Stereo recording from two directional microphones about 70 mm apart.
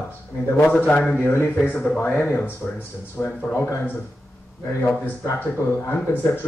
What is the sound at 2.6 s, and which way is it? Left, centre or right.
Speech, centre.